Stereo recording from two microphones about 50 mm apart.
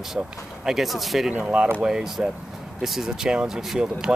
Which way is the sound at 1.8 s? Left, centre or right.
Centre.